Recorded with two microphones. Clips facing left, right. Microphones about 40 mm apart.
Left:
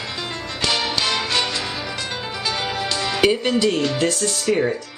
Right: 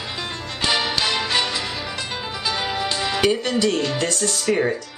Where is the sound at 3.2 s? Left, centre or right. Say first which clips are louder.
Left 3 dB; centre.